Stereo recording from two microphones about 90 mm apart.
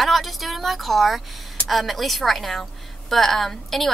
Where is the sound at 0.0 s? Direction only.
Centre (ahead or behind).